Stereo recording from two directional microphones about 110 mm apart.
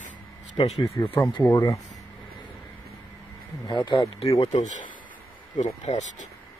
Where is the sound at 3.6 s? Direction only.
45° left (ahead or behind).